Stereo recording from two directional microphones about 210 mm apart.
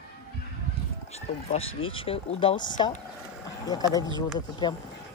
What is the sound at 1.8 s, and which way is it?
A woman's voice, 25° left (ahead or behind).